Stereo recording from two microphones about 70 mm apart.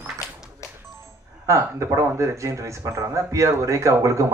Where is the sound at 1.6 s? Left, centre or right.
Right.